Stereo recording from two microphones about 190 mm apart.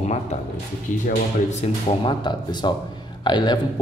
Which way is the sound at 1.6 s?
25° left (ahead or behind).